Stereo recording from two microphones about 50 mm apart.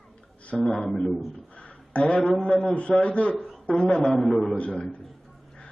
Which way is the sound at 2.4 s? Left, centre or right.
Left.